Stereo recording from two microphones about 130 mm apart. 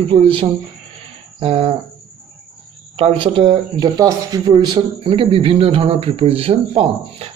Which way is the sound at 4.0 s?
30° right (ahead or behind).